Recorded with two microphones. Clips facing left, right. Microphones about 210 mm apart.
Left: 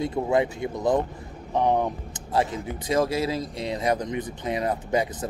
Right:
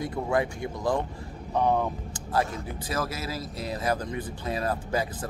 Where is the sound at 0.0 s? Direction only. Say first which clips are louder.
Left 4 dB; 25° left (ahead or behind).